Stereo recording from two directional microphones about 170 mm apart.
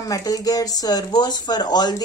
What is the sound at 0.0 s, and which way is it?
Speech, 20° left (ahead or behind).